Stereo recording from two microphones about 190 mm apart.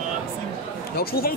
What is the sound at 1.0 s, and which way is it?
Speech, 50° left (ahead or behind).